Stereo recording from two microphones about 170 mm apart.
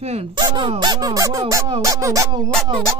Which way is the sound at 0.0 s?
35° right (ahead or behind).